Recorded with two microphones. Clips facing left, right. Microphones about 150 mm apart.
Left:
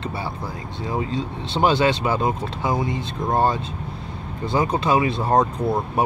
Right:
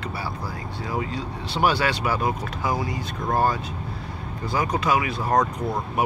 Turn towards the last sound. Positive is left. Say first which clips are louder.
# left 4 dB
turn(degrees=30)  # may be behind; listen again after turning